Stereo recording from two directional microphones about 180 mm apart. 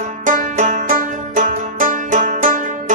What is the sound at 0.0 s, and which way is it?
Music, 45° right (ahead or behind).